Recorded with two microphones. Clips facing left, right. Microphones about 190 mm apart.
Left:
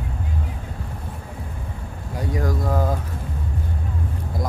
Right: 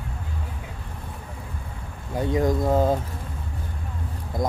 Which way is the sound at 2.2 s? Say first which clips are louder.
Right 4 dB; 25° right (ahead or behind).